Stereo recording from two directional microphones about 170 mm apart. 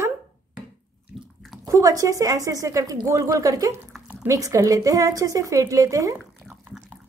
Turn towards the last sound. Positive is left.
turn(degrees=-20)  # may be behind; listen again after turning